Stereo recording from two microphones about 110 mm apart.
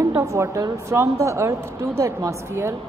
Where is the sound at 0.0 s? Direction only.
25° right (ahead or behind).